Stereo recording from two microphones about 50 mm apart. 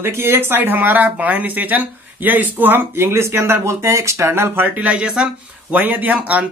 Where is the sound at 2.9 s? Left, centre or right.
Right.